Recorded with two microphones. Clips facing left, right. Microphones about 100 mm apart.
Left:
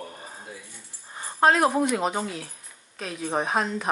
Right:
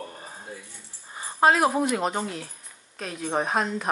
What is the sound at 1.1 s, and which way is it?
Speech, 5° right (ahead or behind).